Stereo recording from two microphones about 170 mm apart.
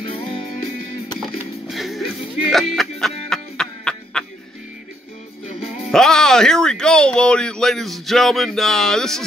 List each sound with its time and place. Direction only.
0.1 s music: 30° left (ahead or behind)
1.7 s music: centre (ahead or behind)
5.9 s speech: 5° left (ahead or behind)